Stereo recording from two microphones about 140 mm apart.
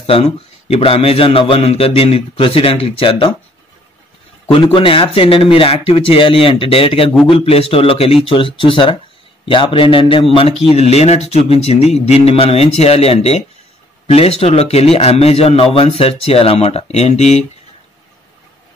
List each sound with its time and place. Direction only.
0.0 s a man's voice: 45° left (ahead or behind)
4.7 s a man's voice: 40° left (ahead or behind)